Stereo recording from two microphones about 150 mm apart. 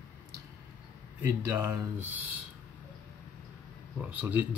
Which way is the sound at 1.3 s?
25° right (ahead or behind).